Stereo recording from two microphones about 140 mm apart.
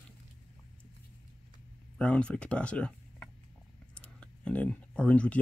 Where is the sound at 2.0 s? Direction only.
10° left (ahead or behind).